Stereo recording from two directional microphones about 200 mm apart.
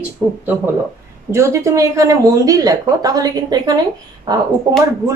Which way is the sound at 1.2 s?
15° right (ahead or behind).